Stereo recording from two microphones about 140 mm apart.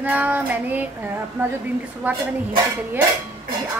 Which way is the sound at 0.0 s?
10° right (ahead or behind).